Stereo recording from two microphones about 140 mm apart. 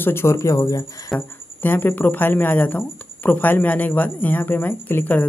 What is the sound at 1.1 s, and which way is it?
Speech, 15° left (ahead or behind).